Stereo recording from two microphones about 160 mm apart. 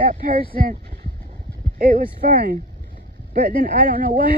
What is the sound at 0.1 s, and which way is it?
Speech, 70° right (ahead or behind).